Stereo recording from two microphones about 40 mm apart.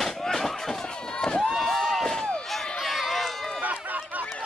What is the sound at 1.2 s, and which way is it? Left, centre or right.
Run, centre.